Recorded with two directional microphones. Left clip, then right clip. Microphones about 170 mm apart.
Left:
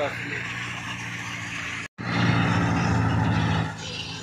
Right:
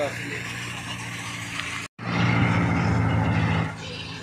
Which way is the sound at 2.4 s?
15° left (ahead or behind).